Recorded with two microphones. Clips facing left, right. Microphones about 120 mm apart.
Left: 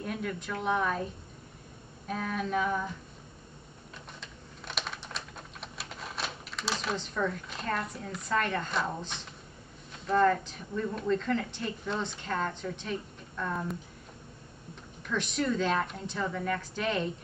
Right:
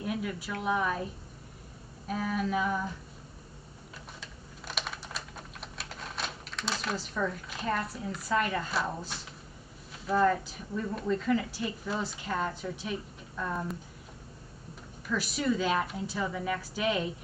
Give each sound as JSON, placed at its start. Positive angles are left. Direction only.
{"t": 0.0, "sound": "a woman's voice", "side_deg": -5}
{"t": 2.0, "sound": "a woman's voice", "side_deg": -5}
{"t": 4.2, "sound": "computer keyboard", "side_deg": 0}
{"t": 10.0, "sound": "a woman's voice", "side_deg": -5}
{"t": 15.0, "sound": "a woman's voice", "side_deg": -5}